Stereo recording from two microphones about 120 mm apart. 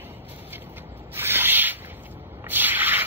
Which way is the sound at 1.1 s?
20° right (ahead or behind).